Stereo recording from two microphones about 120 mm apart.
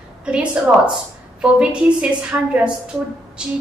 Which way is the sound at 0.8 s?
10° right (ahead or behind).